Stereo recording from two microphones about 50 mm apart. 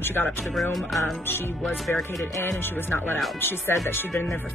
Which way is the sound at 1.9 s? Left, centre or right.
Centre.